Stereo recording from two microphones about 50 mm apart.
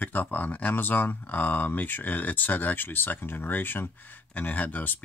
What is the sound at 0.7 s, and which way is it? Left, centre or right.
Speech, left.